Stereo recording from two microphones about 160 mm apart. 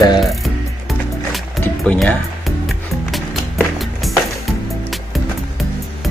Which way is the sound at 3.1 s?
Centre (ahead or behind).